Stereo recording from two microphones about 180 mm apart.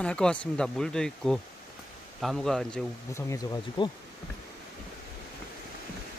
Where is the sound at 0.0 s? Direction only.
5° left (ahead or behind).